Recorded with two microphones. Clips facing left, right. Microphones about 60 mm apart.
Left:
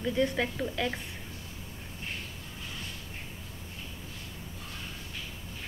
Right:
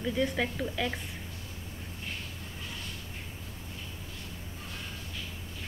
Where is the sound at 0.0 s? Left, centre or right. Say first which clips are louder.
Left 1 dB; centre.